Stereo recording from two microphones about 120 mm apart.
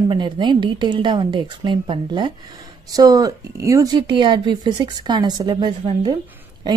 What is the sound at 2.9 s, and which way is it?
A woman's voice, 30° right (ahead or behind).